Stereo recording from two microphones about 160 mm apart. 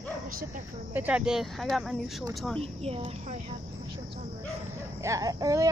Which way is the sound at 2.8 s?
40° right (ahead or behind).